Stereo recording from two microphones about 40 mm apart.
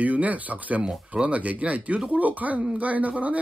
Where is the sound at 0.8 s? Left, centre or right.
Right.